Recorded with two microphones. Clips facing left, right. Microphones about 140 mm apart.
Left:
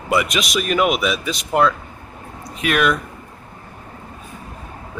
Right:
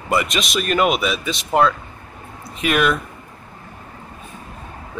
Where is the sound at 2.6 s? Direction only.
Centre (ahead or behind).